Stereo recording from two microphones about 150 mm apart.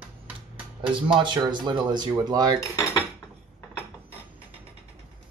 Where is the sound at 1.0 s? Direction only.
30° right (ahead or behind).